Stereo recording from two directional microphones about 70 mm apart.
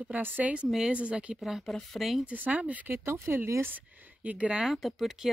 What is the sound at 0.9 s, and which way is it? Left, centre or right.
Speech, centre.